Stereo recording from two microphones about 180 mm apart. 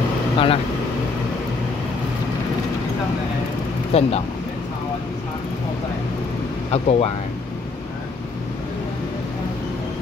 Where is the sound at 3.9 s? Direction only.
35° left (ahead or behind).